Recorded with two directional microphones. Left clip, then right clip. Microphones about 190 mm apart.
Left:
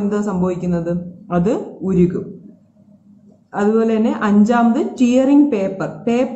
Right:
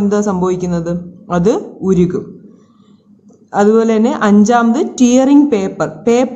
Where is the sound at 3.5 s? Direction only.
45° right (ahead or behind).